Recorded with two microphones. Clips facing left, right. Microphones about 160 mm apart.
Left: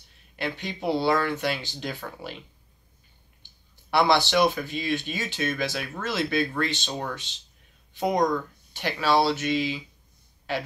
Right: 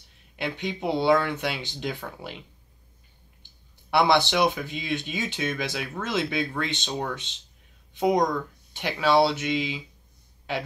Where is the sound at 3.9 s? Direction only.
20° right (ahead or behind).